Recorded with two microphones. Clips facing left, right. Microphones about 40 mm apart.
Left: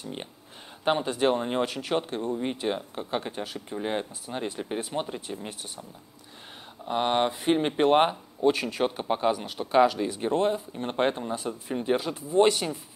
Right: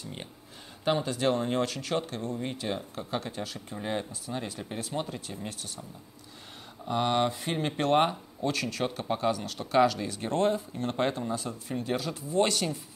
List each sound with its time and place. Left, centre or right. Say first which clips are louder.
0.8 s speech: left 3 dB; left
6.9 s speech: left 2 dB; left
10.8 s speech: left 3 dB; left